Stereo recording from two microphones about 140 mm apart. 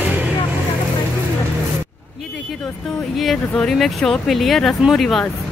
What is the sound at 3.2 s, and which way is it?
Speech, centre (ahead or behind).